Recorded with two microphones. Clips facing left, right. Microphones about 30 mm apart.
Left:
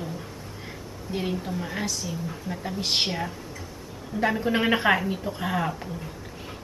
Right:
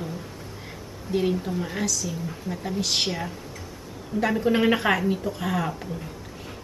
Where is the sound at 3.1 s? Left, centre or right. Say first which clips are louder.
Even; centre.